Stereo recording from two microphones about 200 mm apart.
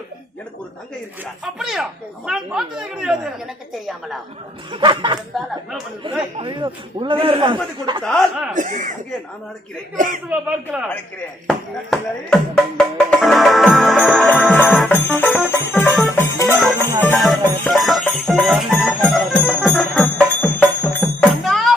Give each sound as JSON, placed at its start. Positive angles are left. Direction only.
{"t": 1.4, "sound": "speech", "side_deg": 0}
{"t": 4.7, "sound": "a man's voice", "side_deg": -25}
{"t": 6.3, "sound": "a man's voice", "side_deg": -25}
{"t": 8.0, "sound": "speech", "side_deg": 0}
{"t": 8.5, "sound": "speech", "side_deg": -40}
{"t": 9.9, "sound": "speech", "side_deg": -40}
{"t": 10.3, "sound": "speech", "side_deg": -5}
{"t": 11.4, "sound": "music", "side_deg": 5}
{"t": 15.0, "sound": "music", "side_deg": 10}
{"t": 16.8, "sound": "music", "side_deg": -15}
{"t": 17.3, "sound": "music", "side_deg": 0}